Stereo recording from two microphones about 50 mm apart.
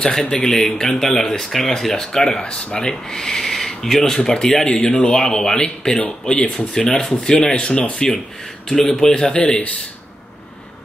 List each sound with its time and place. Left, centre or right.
0.3 s speech: centre